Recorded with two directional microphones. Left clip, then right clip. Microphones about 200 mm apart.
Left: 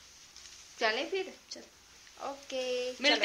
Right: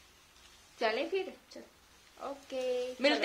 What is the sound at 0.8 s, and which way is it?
Speech, 10° left (ahead or behind).